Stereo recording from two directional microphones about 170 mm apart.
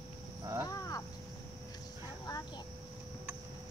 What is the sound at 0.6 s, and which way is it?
Cricket, 20° left (ahead or behind).